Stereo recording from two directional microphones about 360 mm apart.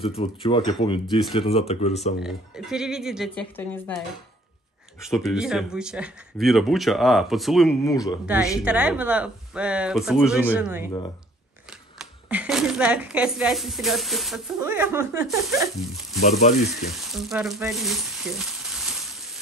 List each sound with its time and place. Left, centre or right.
0.0 s speech: centre
2.2 s speech: centre
5.0 s speech: centre
8.6 s speech: centre
12.3 s speech: centre
16.2 s speech: left
16.6 s frying: centre